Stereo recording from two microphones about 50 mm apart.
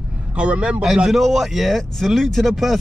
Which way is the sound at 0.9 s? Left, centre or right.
Centre.